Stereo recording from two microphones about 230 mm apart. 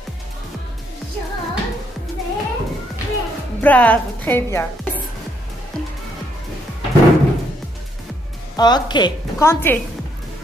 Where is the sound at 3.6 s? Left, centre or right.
Centre.